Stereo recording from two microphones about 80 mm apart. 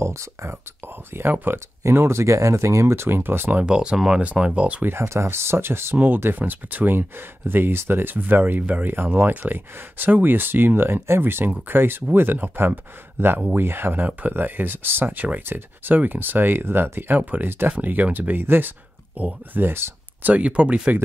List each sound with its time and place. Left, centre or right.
0.0 s speech: right
1.1 s speech: right
1.8 s speech: right
3.6 s speech: centre
4.8 s speech: right
20.3 s speech: centre